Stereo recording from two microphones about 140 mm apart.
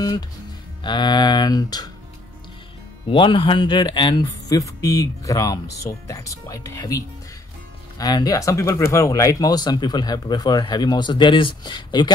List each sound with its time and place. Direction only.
0.8 s speech: 30° left (ahead or behind)
3.1 s speech: 35° left (ahead or behind)